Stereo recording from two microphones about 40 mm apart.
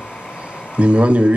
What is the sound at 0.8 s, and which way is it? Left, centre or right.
Speech, right.